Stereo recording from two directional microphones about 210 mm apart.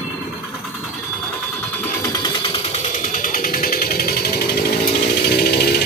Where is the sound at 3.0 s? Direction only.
40° left (ahead or behind).